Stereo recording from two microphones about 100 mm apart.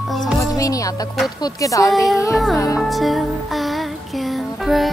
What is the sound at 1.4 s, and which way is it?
Speech, 35° left (ahead or behind).